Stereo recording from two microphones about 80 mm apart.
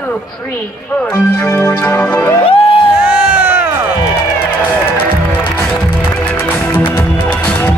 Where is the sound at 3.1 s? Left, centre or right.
Right.